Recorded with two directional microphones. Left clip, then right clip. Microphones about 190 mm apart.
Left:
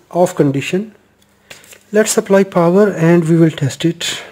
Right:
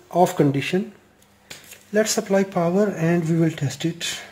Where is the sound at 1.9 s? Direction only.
45° left (ahead or behind).